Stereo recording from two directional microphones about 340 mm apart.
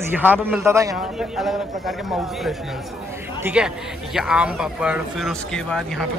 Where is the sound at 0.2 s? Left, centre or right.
Centre.